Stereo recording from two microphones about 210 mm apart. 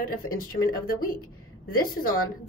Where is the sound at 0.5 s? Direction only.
45° left (ahead or behind).